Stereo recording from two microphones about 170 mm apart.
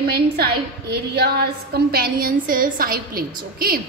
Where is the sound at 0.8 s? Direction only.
70° right (ahead or behind).